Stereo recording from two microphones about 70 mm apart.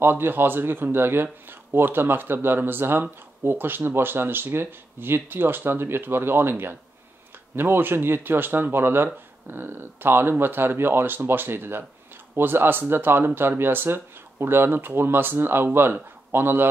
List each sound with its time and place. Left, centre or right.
0.0 s a man's voice: right